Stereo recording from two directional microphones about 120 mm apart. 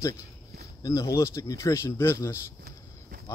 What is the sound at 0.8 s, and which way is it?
Speech, 30° left (ahead or behind).